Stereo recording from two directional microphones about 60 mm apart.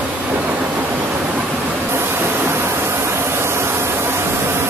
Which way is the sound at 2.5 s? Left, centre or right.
Right.